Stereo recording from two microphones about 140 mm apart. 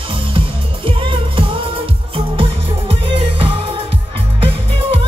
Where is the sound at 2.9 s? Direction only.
40° right (ahead or behind).